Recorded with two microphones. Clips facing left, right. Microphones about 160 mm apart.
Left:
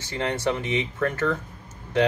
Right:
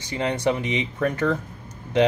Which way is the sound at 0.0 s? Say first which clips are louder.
Right 3 dB; 15° right (ahead or behind).